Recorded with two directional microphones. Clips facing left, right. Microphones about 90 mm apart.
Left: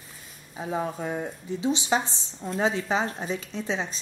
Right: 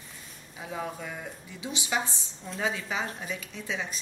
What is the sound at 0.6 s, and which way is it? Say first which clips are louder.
A woman's voice: left 6 dB; 35° left (ahead or behind).